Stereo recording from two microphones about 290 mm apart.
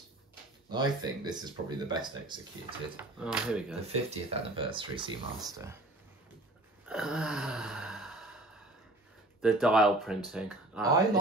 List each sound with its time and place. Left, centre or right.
0.7 s speech: centre
3.2 s speech: centre
3.8 s speech: right
6.9 s gasp: centre
9.4 s speech: centre